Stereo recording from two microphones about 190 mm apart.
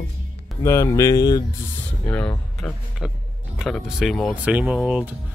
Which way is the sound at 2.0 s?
5° left (ahead or behind).